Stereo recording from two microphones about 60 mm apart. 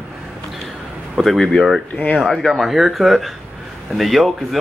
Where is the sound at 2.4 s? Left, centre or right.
Centre.